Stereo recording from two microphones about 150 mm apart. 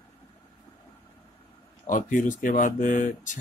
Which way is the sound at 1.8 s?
60° left (ahead or behind).